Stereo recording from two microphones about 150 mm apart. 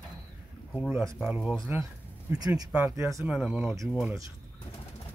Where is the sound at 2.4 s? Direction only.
25° right (ahead or behind); by 3.7 s 5° right (ahead or behind).